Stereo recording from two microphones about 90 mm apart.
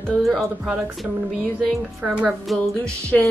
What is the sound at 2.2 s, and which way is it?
Speech, 5° left (ahead or behind).